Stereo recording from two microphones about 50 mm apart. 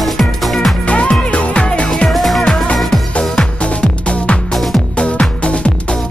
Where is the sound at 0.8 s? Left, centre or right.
Left.